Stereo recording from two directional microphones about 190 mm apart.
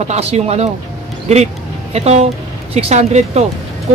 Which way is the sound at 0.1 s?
35° right (ahead or behind).